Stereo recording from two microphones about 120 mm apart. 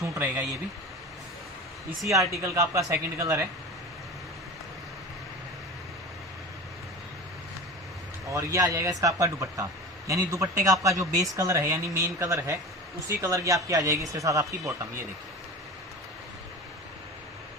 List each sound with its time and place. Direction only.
2.0 s a man's voice: 25° right (ahead or behind)
8.3 s a man's voice: 25° right (ahead or behind)